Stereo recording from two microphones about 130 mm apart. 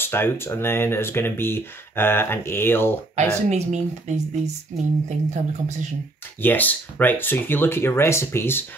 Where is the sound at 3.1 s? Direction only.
65° right (ahead or behind).